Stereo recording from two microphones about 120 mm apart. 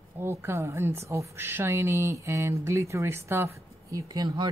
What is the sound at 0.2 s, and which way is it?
A woman's voice, 20° right (ahead or behind).